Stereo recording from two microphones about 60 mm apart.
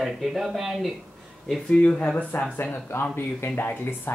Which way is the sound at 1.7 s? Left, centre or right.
Centre.